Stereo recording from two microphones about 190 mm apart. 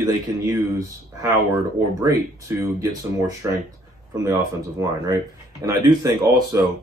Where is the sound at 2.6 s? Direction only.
20° right (ahead or behind).